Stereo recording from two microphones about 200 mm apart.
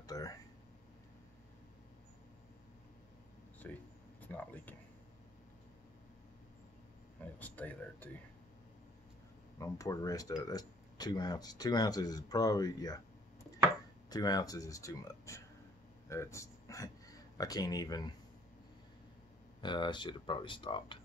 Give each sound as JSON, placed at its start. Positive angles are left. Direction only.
{"t": 0.0, "sound": "a sound", "side_deg": 15}
{"t": 3.6, "sound": "speech", "side_deg": 10}
{"t": 7.3, "sound": "speech", "side_deg": 10}
{"t": 9.6, "sound": "speech", "side_deg": 15}
{"t": 19.6, "sound": "speech", "side_deg": 25}